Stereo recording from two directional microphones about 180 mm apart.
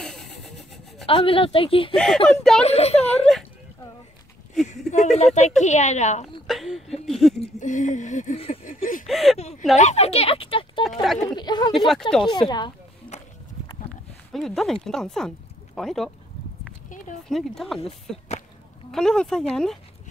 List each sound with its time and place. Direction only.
0.0 s a sound: centre (ahead or behind)
1.0 s speech: 30° left (ahead or behind)
2.0 s speech: 5° left (ahead or behind)
2.6 s speech: 35° left (ahead or behind)
4.6 s speech: 40° left (ahead or behind)
6.4 s a sound: centre (ahead or behind)
7.6 s speech: 45° left (ahead or behind)
8.6 s speech: 50° left (ahead or behind)
9.0 s speech: centre (ahead or behind)
9.4 s speech: 35° left (ahead or behind)
10.8 s speech: centre (ahead or behind)
11.1 s speech: 25° left (ahead or behind)
14.3 s speech: centre (ahead or behind)
17.3 s speech: centre (ahead or behind)